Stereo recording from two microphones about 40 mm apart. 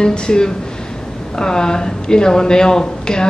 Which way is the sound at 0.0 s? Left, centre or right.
Left.